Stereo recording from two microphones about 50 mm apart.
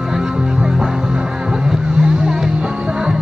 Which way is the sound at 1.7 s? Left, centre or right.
Centre.